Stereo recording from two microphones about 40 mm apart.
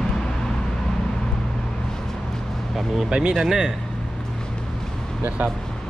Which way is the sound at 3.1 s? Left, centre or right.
Right.